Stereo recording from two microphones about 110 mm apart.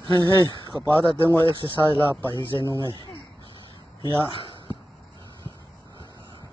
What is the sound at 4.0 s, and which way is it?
Speech, 45° left (ahead or behind).